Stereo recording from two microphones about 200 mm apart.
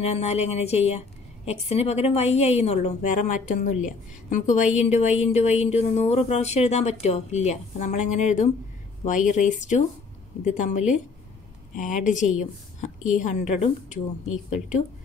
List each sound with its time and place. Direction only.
0.0 s a woman's voice: 30° left (ahead or behind)